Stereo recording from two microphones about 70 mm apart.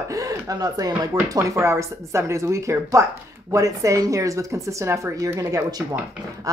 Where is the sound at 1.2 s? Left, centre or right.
Right.